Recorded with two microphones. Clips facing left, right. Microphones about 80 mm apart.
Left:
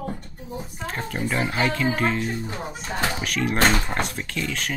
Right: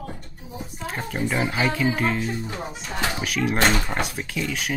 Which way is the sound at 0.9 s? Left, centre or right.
Centre.